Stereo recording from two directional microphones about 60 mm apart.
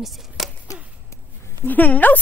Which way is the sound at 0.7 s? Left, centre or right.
Left.